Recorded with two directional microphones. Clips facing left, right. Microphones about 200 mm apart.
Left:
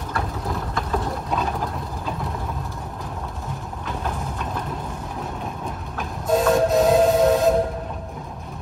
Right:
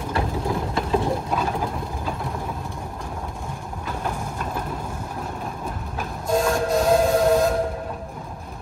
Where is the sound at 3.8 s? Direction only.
Centre (ahead or behind).